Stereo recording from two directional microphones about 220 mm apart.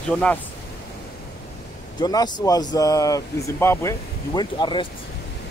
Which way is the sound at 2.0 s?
20° left (ahead or behind).